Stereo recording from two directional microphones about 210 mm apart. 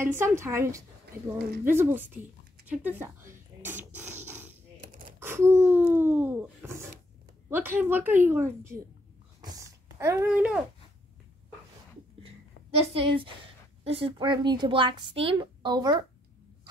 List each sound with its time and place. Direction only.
0.0 s a woman's voice: 10° right (ahead or behind)
1.1 s speech: 40° right (ahead or behind)
1.6 s a woman's voice: 10° right (ahead or behind)
2.6 s a sound: 10° right (ahead or behind)
7.4 s a woman's voice: 10° right (ahead or behind)
9.4 s a sound: 15° right (ahead or behind)
12.9 s a child's voice: 25° right (ahead or behind)